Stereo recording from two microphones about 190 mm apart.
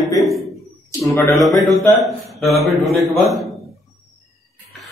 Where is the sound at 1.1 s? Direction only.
15° left (ahead or behind).